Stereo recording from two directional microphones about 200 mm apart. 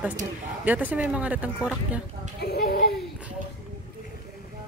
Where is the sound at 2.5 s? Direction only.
50° left (ahead or behind).